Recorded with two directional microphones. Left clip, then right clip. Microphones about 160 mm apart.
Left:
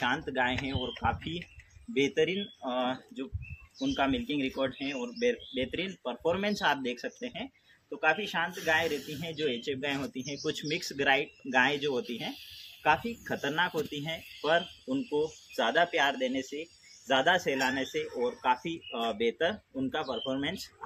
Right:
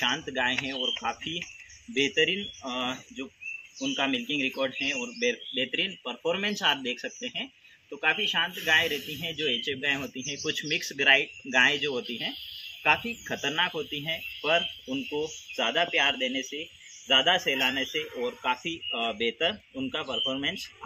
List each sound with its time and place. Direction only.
0.0 s speech: 10° left (ahead or behind)
12.4 s a sound: 65° left (ahead or behind)
12.8 s speech: 5° left (ahead or behind)